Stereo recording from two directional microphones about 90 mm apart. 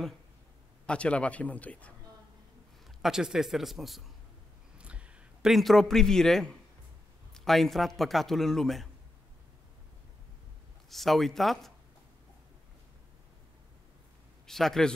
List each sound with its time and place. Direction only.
0.8 s speech: 15° left (ahead or behind)
3.0 s a man's voice: 5° right (ahead or behind)
4.7 s a sound: 15° right (ahead or behind)
5.5 s a man's voice: centre (ahead or behind)
10.9 s a man's voice: centre (ahead or behind)
14.4 s speech: 5° left (ahead or behind)